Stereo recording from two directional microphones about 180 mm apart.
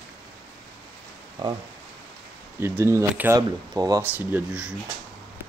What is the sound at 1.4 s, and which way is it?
Speech, 25° right (ahead or behind).